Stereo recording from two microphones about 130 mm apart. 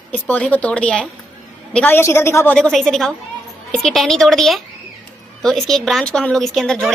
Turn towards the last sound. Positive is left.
turn(degrees=5)  # may be behind; listen again after turning